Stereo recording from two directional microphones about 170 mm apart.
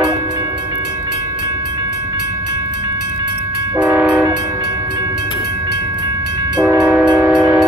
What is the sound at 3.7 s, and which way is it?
Train, 5° right (ahead or behind).